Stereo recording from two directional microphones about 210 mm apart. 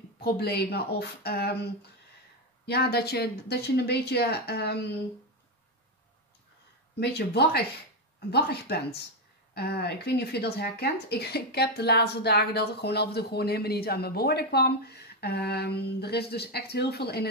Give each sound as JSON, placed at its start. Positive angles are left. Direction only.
{"t": 0.2, "sound": "speech", "side_deg": 50}
{"t": 7.0, "sound": "speech", "side_deg": 50}